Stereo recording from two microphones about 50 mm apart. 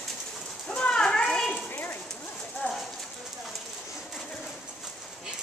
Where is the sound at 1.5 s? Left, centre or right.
Left.